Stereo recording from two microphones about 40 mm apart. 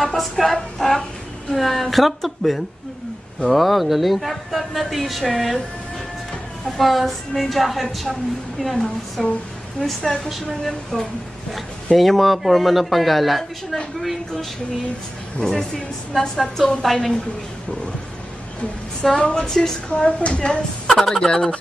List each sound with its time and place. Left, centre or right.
0.0 s speech: centre
6.6 s a woman's voice: centre
15.3 s a woman's voice: centre
19.1 s a woman's voice: left
19.9 s a woman's voice: left
20.8 s speech: centre
21.3 s a woman's voice: left